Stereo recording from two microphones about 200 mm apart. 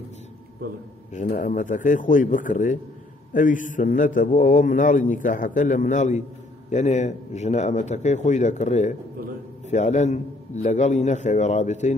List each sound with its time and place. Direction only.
1.1 s a man's voice: 40° left (ahead or behind)